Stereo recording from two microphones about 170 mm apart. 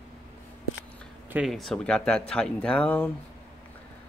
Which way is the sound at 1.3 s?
Centre (ahead or behind).